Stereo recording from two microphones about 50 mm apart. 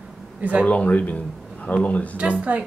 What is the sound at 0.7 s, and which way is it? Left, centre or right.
A man's voice, left.